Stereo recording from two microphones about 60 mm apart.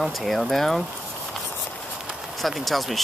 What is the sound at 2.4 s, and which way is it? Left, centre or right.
Speech, centre.